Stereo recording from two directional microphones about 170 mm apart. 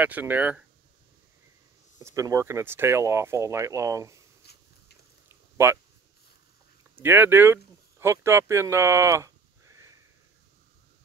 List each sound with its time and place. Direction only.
0.0 s speech: 10° right (ahead or behind)
2.0 s speech: 20° right (ahead or behind)
4.4 s a sound: 75° left (ahead or behind)
5.6 s speech: 15° right (ahead or behind)
7.0 s speech: 10° right (ahead or behind)